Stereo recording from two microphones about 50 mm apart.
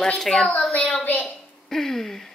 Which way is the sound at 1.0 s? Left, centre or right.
Left.